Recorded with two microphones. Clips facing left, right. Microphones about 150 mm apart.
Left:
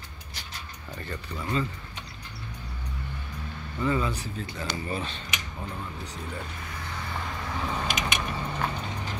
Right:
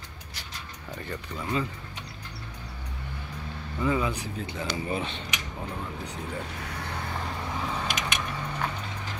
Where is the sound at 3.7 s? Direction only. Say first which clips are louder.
Even; 10° right (ahead or behind).